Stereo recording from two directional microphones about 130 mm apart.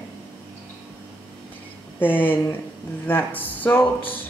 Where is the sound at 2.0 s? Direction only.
15° left (ahead or behind).